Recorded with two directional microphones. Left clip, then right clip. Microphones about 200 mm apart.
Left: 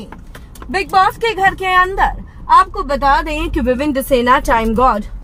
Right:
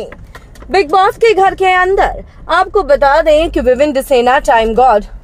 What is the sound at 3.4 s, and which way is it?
Speech, 30° right (ahead or behind).